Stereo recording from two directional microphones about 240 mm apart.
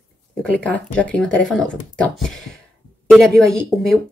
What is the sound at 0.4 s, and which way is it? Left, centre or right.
Speech, centre.